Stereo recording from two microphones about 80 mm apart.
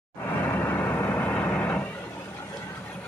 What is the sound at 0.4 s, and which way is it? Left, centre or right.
Vehicle, left.